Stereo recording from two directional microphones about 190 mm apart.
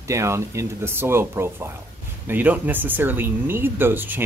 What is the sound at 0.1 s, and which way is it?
Speech, 15° right (ahead or behind).